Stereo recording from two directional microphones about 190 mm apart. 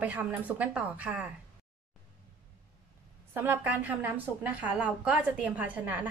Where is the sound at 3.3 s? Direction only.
10° right (ahead or behind).